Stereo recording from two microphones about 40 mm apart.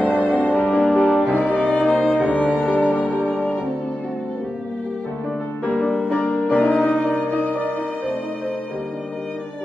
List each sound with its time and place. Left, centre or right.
0.0 s music: right
0.3 s music: left
3.1 s music: right
6.3 s music: left